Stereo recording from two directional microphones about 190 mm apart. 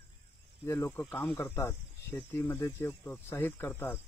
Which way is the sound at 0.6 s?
15° left (ahead or behind).